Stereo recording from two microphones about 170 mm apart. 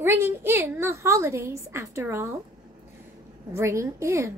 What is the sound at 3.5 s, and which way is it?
Speech, 15° right (ahead or behind).